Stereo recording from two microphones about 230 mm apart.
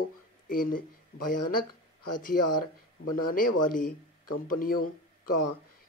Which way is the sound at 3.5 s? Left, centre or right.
Left.